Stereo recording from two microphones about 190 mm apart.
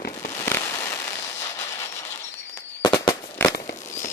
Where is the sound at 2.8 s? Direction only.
20° left (ahead or behind).